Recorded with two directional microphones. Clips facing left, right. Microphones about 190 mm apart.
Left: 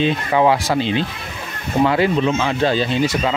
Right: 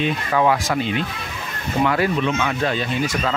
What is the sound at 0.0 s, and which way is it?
Speech, 25° left (ahead or behind).